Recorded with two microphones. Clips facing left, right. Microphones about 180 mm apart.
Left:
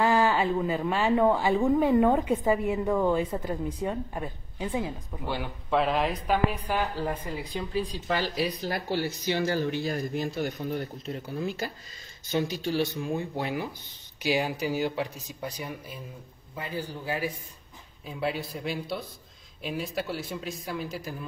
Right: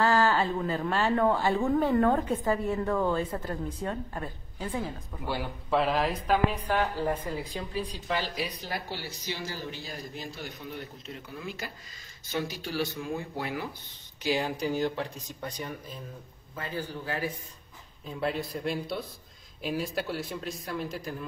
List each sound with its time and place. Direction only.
0.0 s speech: 10° left (ahead or behind)
5.2 s speech: 5° right (ahead or behind)
8.5 s speech: 45° left (ahead or behind)
12.3 s speech: 20° left (ahead or behind)
14.2 s speech: 10° left (ahead or behind)
18.0 s speech: centre (ahead or behind)